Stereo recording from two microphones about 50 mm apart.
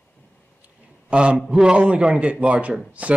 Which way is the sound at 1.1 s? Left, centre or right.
Right.